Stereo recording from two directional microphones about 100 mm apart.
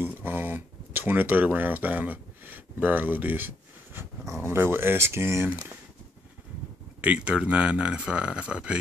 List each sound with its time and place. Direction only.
0.0 s speech: 20° right (ahead or behind)
7.0 s speech: 10° right (ahead or behind)